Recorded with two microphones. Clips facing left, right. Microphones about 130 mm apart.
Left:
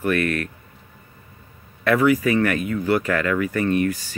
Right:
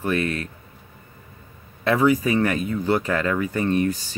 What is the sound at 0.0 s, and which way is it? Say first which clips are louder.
Speech: left 2 dB; 25° right (ahead or behind).